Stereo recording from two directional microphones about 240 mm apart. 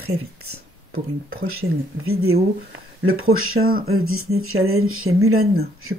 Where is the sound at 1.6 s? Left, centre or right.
Right.